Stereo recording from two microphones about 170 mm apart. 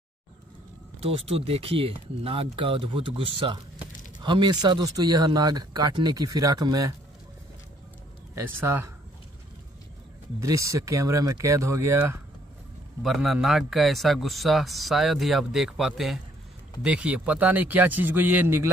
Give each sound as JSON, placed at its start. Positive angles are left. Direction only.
{"t": 1.0, "sound": "speech", "side_deg": -35}
{"t": 8.5, "sound": "speech", "side_deg": -15}
{"t": 10.4, "sound": "speech", "side_deg": -20}
{"t": 13.0, "sound": "a man's voice", "side_deg": 0}